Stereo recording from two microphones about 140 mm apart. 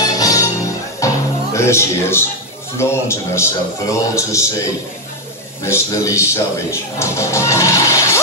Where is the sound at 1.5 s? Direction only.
20° left (ahead or behind).